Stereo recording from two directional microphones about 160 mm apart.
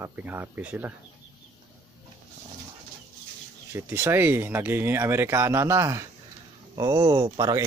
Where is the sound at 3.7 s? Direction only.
15° right (ahead or behind).